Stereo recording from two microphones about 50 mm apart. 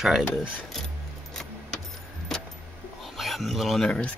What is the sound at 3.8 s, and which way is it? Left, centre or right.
Speech, left.